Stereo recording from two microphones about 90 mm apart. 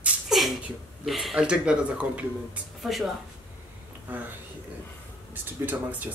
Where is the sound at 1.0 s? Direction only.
Centre (ahead or behind).